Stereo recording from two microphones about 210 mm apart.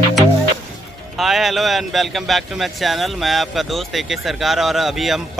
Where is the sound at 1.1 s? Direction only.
Centre (ahead or behind).